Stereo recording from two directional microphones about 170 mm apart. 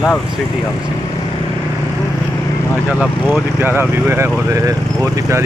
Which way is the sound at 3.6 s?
15° right (ahead or behind).